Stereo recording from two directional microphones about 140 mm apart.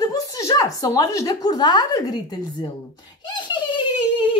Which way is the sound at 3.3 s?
35° left (ahead or behind).